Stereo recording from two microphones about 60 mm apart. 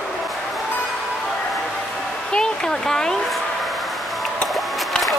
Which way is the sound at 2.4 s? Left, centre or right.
Centre.